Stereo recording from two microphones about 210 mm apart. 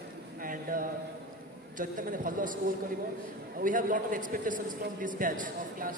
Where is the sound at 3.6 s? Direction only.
40° right (ahead or behind).